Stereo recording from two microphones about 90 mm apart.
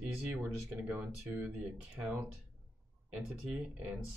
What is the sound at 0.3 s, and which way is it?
Speech, 15° right (ahead or behind).